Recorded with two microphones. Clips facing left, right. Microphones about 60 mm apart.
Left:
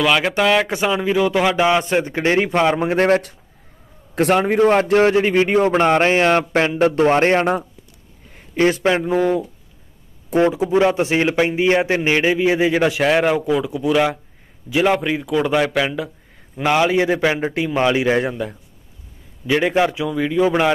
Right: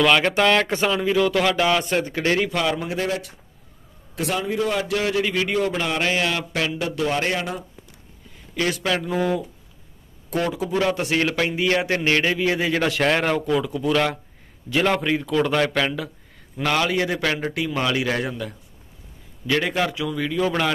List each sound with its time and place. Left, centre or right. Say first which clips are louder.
0.0 s speech: left 1 dB; centre; by 2.9 s left
2.9 s a man's voice: left 10 dB; left
5.7 s a man's voice: left 9 dB; left
8.5 s a man's voice: left 7 dB; left
9.2 s a man's voice: left 5 dB; centre